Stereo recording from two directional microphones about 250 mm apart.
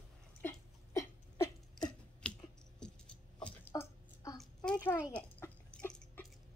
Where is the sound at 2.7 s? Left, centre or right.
Centre.